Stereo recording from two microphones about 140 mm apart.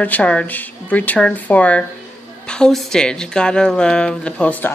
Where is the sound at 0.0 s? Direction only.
10° left (ahead or behind).